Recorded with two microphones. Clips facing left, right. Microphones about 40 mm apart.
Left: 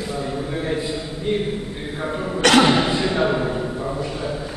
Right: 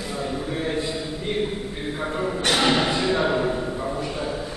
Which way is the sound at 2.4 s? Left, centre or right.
Left.